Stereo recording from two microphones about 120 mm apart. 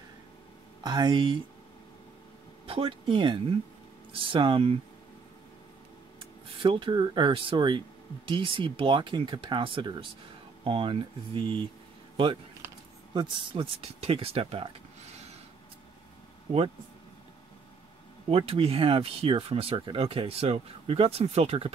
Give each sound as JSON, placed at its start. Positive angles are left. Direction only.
{"t": 0.8, "sound": "speech", "side_deg": -40}
{"t": 2.6, "sound": "speech", "side_deg": -50}
{"t": 6.6, "sound": "speech", "side_deg": -45}
{"t": 13.1, "sound": "speech", "side_deg": -40}
{"t": 18.3, "sound": "speech", "side_deg": -55}